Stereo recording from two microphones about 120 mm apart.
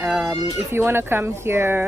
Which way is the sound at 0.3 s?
25° right (ahead or behind).